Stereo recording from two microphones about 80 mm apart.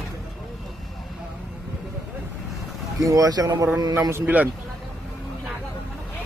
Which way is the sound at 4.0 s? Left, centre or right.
Right.